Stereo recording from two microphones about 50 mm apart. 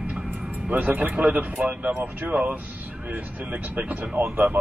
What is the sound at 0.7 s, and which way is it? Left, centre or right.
Speech, right.